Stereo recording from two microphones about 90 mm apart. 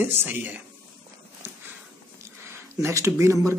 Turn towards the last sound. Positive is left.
turn(degrees=-35)  # may be behind; listen again after turning